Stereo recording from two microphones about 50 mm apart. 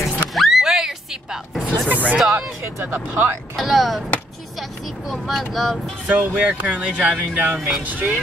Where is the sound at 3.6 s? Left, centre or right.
Centre.